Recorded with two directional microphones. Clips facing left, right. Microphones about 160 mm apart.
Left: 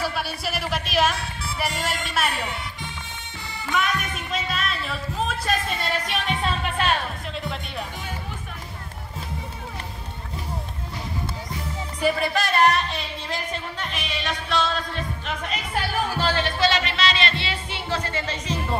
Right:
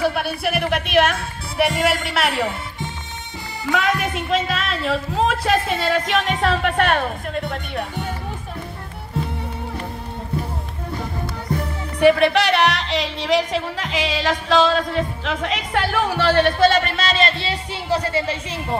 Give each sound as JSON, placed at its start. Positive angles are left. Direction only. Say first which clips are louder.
{"t": 0.0, "sound": "speech", "louder": "right 7 dB", "side_deg": -60}
{"t": 3.7, "sound": "a woman's voice", "louder": "right 5 dB", "side_deg": -90}
{"t": 11.4, "sound": "music", "louder": "right 7 dB", "side_deg": -65}